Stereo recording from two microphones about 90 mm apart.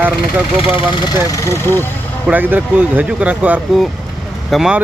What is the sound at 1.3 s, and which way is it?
Speech, 35° left (ahead or behind).